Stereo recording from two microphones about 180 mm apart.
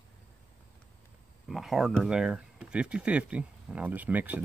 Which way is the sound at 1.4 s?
Centre (ahead or behind).